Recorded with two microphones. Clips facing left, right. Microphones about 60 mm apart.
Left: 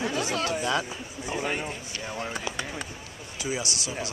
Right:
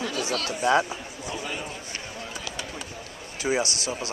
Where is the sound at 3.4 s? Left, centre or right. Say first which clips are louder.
Right 5 dB; right.